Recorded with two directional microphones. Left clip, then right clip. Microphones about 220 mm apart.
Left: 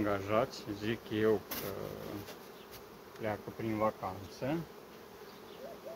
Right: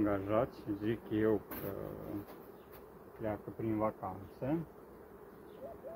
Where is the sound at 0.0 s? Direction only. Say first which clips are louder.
Left 1 dB; 5° right (ahead or behind).